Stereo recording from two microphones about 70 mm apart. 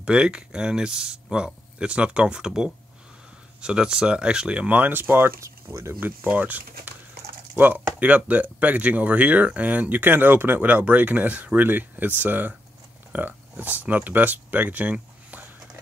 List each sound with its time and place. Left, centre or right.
0.0 s speech: centre
4.7 s speech: right
5.4 s speech: right
5.9 s speech: right